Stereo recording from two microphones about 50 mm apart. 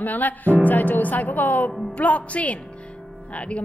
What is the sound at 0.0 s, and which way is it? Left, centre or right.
A woman's voice, left.